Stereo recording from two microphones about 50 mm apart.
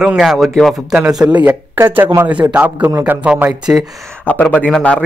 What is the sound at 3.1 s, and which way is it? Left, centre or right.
Speech, right.